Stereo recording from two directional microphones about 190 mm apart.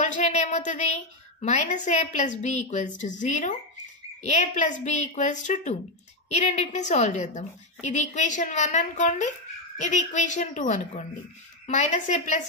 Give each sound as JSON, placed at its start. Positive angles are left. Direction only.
{"t": 0.0, "sound": "a woman's voice", "side_deg": 35}